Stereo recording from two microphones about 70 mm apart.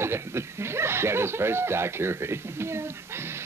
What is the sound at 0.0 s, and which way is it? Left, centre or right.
Speech, right.